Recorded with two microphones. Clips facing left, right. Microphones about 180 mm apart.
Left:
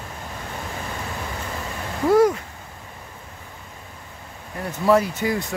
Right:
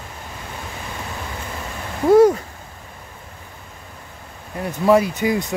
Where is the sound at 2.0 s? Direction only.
25° right (ahead or behind).